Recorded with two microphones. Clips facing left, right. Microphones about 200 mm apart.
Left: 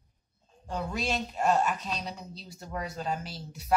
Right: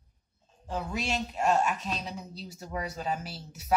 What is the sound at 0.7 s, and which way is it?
Speech, 5° right (ahead or behind).